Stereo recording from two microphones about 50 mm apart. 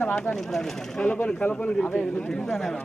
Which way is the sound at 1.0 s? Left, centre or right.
Left.